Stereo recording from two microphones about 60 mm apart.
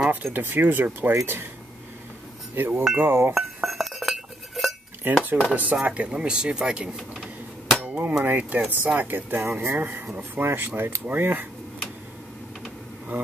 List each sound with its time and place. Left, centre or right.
0.1 s speech: right
2.5 s speech: right
3.3 s chink: centre
5.0 s speech: right
7.8 s hammer: right
8.2 s speech: right
9.8 s speech: right
10.3 s speech: right
13.1 s speech: right